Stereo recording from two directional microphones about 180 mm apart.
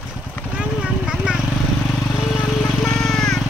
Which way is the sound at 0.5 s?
5° right (ahead or behind).